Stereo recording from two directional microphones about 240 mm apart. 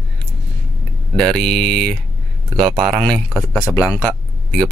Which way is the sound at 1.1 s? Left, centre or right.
Centre.